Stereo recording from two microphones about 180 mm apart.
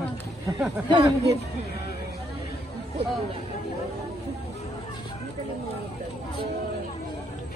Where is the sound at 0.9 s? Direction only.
20° right (ahead or behind).